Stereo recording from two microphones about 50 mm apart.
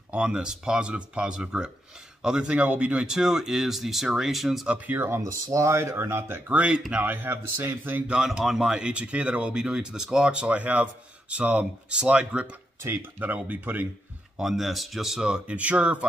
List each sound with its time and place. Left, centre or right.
0.1 s speech: centre
3.1 s speech: centre
4.9 s speech: right
5.2 s speech: right
6.5 s speech: right
7.0 s a man's voice: right
8.5 s speech: centre
12.8 s speech: right
13.2 s a man's voice: right
14.3 s speech: centre
15.2 s speech: right